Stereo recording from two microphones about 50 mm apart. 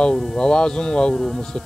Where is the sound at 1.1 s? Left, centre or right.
Centre.